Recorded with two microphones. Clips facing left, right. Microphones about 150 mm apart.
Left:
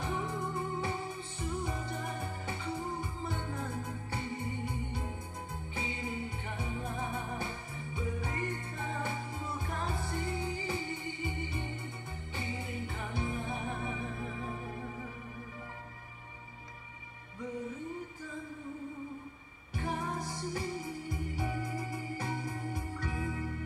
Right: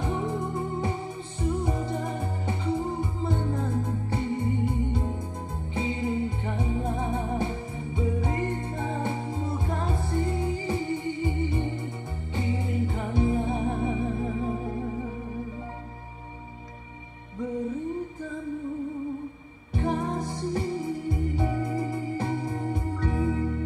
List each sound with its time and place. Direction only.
0.0 s music: 25° right (ahead or behind)
19.7 s music: 25° right (ahead or behind)
21.5 s organ: 60° right (ahead or behind)
21.9 s music: 25° right (ahead or behind)